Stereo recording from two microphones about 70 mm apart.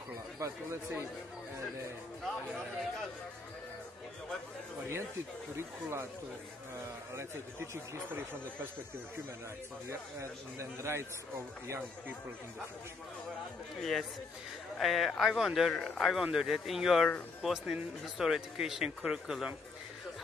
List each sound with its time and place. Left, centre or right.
0.4 s speech: right
5.6 s speech: right
9.8 s speech: right
13.7 s speech: centre